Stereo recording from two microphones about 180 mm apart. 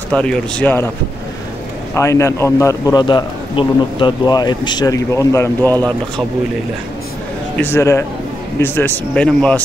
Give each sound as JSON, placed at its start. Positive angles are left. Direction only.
{"t": 0.1, "sound": "speech", "side_deg": 5}
{"t": 2.0, "sound": "a man's voice", "side_deg": 15}
{"t": 7.5, "sound": "speech", "side_deg": 15}